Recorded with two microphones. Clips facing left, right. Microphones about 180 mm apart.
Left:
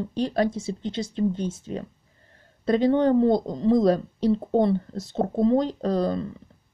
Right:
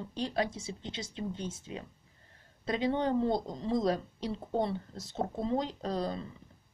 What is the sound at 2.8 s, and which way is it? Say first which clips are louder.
Speech: left 9 dB; 60° left (ahead or behind).